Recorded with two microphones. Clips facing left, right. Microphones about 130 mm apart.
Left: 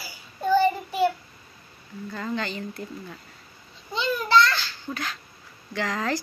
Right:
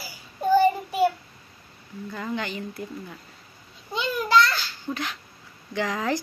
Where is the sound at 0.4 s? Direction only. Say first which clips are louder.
Right 2 dB; 10° right (ahead or behind).